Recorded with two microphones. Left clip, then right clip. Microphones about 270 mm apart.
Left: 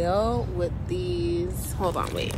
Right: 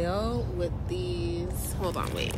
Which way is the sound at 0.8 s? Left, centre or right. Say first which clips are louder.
Left 5 dB; centre.